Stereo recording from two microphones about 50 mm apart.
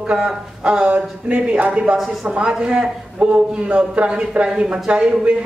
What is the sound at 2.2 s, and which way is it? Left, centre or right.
A man's voice, centre.